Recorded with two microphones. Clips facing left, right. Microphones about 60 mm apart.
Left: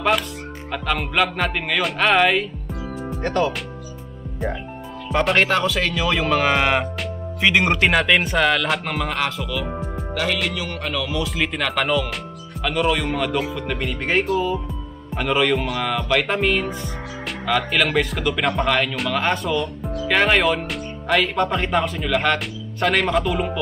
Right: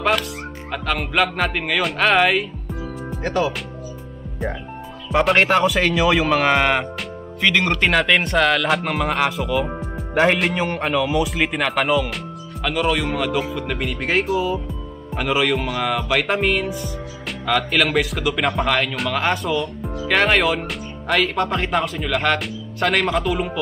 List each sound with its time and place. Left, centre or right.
0.7 s speech: centre
7.4 s speech: centre
7.8 s speech: centre
9.2 s speech: centre
10.1 s speech: right
10.8 s speech: right
11.2 s speech: centre